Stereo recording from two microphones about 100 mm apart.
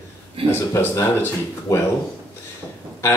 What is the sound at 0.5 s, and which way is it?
A man's voice, 25° left (ahead or behind).